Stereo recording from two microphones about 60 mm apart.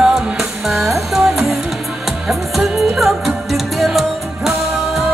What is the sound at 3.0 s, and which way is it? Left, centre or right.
Music, centre.